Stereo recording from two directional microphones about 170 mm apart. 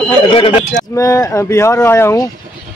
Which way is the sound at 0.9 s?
20° left (ahead or behind).